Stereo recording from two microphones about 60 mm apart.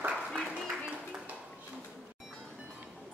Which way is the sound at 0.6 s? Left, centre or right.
Centre.